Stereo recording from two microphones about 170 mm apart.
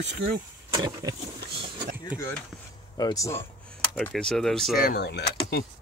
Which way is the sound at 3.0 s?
20° left (ahead or behind).